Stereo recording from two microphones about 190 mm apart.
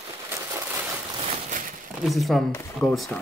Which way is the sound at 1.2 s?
40° right (ahead or behind).